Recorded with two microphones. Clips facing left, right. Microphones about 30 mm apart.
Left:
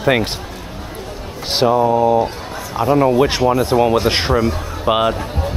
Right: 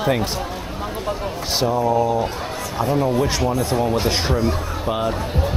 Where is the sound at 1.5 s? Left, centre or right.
Left.